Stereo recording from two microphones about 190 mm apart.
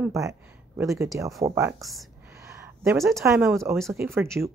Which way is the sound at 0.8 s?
15° right (ahead or behind).